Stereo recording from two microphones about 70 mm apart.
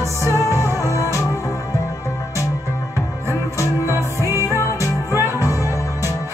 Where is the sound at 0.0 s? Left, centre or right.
Left.